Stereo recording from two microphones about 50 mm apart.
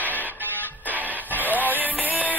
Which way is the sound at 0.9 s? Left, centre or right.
Right.